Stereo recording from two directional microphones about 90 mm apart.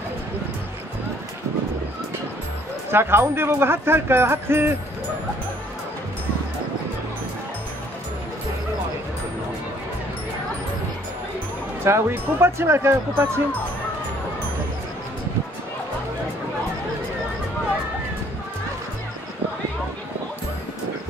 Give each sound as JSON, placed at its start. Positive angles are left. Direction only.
{"t": 2.9, "sound": "speech", "side_deg": -25}
{"t": 11.8, "sound": "speech", "side_deg": -30}